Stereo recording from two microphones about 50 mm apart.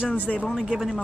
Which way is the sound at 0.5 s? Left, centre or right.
Centre.